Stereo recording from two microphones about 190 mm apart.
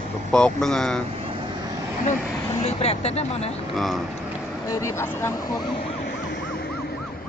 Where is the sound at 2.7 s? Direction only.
35° left (ahead or behind).